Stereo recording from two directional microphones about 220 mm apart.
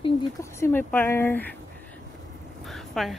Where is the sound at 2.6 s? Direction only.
Centre (ahead or behind).